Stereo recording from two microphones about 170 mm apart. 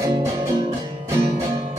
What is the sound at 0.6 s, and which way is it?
Music, 30° right (ahead or behind).